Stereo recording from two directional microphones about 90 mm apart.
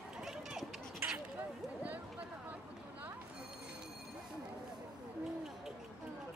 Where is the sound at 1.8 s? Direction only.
15° right (ahead or behind).